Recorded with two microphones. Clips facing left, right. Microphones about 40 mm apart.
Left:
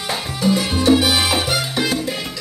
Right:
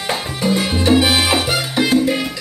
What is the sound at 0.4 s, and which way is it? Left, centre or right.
Salsa music, right.